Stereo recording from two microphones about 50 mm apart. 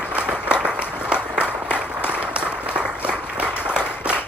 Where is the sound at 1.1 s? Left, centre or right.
Right.